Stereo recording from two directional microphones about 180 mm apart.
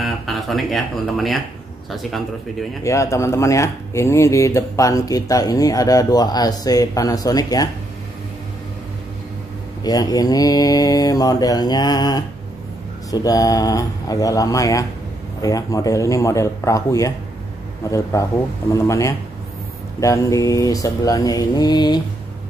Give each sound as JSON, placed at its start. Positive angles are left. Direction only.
{"t": 0.0, "sound": "a man's voice", "side_deg": 0}
{"t": 2.8, "sound": "speech", "side_deg": 15}
{"t": 9.8, "sound": "speech", "side_deg": 20}